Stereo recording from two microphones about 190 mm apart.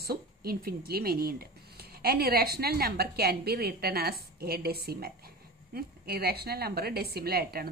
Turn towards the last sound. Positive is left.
turn(degrees=-55)  # may be behind; listen again after turning